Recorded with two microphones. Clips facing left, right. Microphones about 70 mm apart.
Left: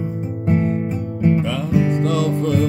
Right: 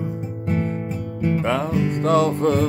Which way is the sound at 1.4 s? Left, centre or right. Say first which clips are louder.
Right 2 dB; right.